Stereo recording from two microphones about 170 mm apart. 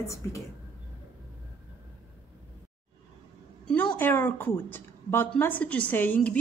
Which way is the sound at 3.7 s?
10° left (ahead or behind).